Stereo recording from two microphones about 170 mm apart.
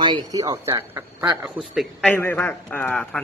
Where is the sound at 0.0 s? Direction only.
25° right (ahead or behind).